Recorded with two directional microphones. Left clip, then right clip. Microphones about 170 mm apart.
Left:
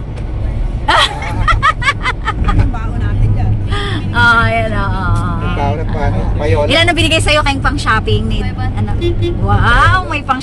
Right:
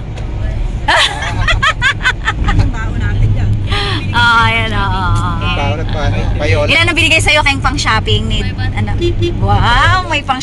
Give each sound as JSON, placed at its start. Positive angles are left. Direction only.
{"t": 0.8, "sound": "vehicle", "side_deg": -10}
{"t": 3.7, "sound": "music", "side_deg": 0}
{"t": 5.6, "sound": "a sound", "side_deg": 40}
{"t": 6.4, "sound": "a sound", "side_deg": 50}
{"t": 6.7, "sound": "speech", "side_deg": -5}
{"t": 9.5, "sound": "speech", "side_deg": -5}